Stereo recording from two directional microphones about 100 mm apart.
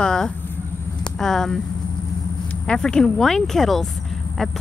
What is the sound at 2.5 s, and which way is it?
A woman's voice, 5° left (ahead or behind).